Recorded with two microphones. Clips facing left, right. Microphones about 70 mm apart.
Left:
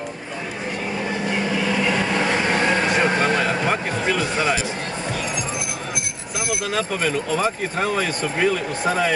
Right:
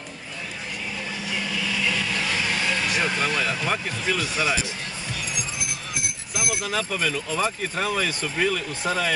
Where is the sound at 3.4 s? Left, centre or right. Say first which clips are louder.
Left 5 dB; left.